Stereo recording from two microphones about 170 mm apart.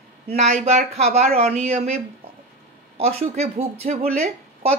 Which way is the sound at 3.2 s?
40° right (ahead or behind).